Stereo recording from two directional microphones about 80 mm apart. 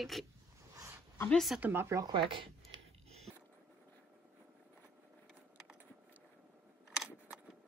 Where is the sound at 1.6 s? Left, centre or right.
Right.